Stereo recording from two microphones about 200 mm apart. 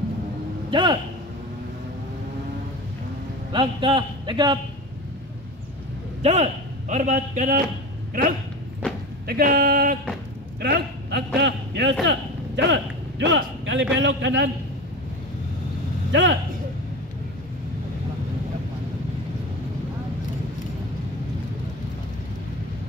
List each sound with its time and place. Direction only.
0.7 s speech: 25° right (ahead or behind)
3.5 s a man's voice: 25° right (ahead or behind)
6.2 s a man's voice: 35° right (ahead or behind)
9.3 s a man's voice: 50° right (ahead or behind); by 14.5 s 65° right (ahead or behind)
16.1 s speech: 65° right (ahead or behind)